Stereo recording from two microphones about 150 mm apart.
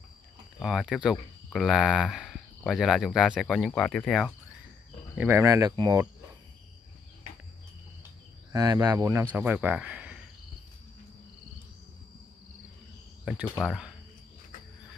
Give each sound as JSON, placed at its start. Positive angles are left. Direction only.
{"t": 0.6, "sound": "speech", "side_deg": 0}
{"t": 5.1, "sound": "speech", "side_deg": -10}
{"t": 8.5, "sound": "speech", "side_deg": -25}
{"t": 13.2, "sound": "cricket", "side_deg": -5}
{"t": 13.7, "sound": "speech", "side_deg": -5}